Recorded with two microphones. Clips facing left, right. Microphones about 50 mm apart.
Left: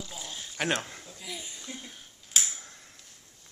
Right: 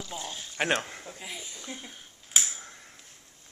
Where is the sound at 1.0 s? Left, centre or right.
Right.